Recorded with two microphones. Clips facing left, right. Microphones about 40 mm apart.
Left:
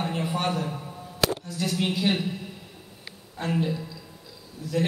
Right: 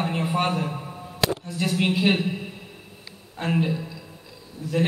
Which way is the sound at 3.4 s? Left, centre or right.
Right.